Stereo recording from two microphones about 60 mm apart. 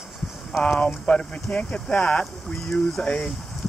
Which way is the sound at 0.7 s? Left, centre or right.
Centre.